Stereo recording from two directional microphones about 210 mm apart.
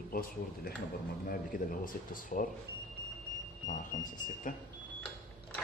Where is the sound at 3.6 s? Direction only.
40° left (ahead or behind).